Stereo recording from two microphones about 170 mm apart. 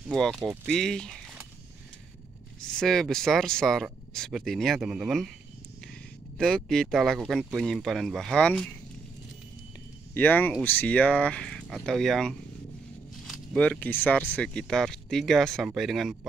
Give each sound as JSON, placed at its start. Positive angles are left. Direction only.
{"t": 0.1, "sound": "speech", "side_deg": 5}
{"t": 2.6, "sound": "speech", "side_deg": 5}
{"t": 6.3, "sound": "speech", "side_deg": 5}
{"t": 10.1, "sound": "speech", "side_deg": 10}